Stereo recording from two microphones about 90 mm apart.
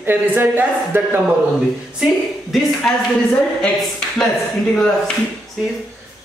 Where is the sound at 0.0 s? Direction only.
20° right (ahead or behind).